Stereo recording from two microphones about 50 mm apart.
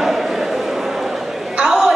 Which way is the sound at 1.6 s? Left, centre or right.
Centre.